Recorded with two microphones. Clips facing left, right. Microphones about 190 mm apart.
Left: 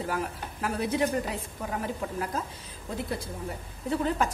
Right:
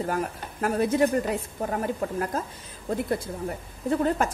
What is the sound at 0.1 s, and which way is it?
A woman's voice, 45° right (ahead or behind).